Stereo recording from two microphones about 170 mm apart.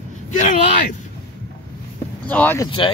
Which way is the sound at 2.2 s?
10° left (ahead or behind).